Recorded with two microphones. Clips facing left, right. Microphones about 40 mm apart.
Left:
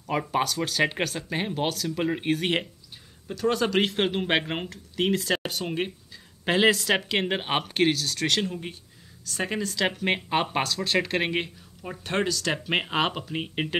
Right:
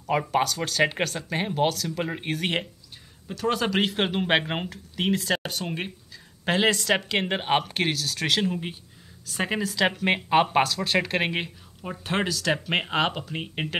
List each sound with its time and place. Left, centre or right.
0.0 s speech: centre
9.3 s a woman's voice: right
9.6 s speech: centre